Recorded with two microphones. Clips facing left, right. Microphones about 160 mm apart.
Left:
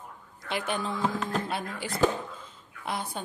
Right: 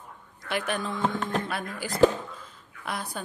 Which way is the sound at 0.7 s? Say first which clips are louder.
Even; centre (ahead or behind).